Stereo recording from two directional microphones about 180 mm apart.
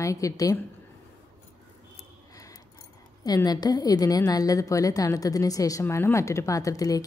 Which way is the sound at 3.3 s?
20° left (ahead or behind).